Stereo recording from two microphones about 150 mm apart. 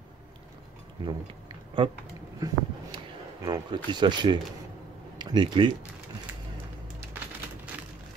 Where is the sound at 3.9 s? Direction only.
30° right (ahead or behind).